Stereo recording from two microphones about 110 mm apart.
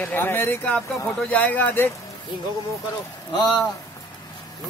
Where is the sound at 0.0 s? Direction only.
15° left (ahead or behind).